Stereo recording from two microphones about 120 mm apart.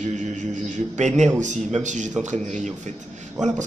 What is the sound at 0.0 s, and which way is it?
Mantra, 90° right.